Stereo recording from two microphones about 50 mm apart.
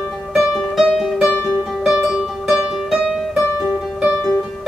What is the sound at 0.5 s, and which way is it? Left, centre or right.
Music, centre.